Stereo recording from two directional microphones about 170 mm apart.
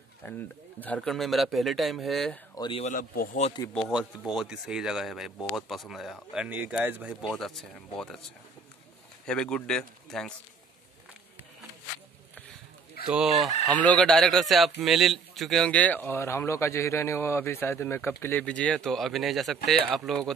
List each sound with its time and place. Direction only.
0.2 s speech: 10° left (ahead or behind)
2.5 s speech: 25° left (ahead or behind)
2.8 s a man's voice: 55° left (ahead or behind)
3.7 s speech: centre (ahead or behind)
9.2 s speech: 5° left (ahead or behind)
13.1 s speech: centre (ahead or behind)